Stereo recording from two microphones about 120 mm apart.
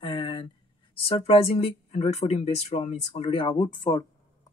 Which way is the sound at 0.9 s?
55° left (ahead or behind).